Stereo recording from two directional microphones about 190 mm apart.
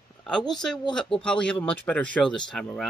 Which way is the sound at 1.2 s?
5° left (ahead or behind).